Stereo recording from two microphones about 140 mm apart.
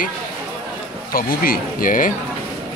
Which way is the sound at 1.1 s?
90° left.